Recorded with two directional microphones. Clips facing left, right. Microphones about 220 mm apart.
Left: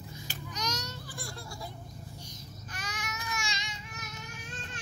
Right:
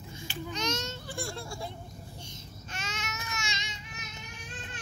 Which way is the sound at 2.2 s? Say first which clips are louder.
Right 1 dB; 25° right (ahead or behind).